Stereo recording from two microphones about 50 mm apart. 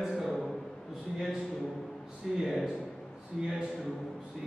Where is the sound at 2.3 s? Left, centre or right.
Centre.